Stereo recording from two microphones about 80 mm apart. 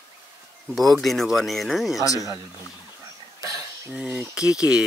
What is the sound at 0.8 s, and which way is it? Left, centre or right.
Speech, centre.